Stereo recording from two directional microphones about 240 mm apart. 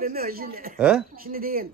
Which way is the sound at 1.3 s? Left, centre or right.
Right.